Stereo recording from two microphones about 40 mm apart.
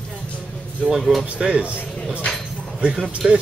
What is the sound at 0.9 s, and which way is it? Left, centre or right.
Speech, centre.